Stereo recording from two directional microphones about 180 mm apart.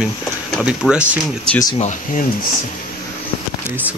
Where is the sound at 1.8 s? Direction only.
40° left (ahead or behind).